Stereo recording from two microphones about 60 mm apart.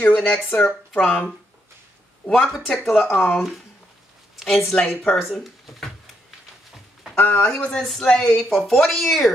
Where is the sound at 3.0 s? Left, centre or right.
Left.